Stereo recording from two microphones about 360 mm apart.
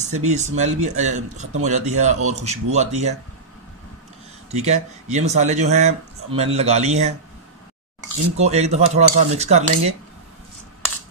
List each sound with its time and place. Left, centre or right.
0.0 s speech: centre
4.5 s speech: centre
8.4 s speech: centre